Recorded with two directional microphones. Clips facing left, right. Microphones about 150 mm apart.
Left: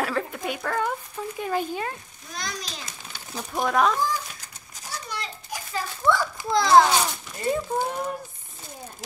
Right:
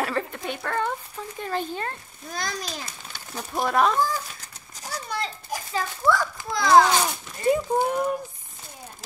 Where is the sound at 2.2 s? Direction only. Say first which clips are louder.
Right 3 dB; 50° right (ahead or behind).